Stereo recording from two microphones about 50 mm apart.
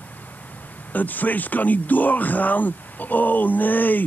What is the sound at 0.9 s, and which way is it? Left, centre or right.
A man's voice, left.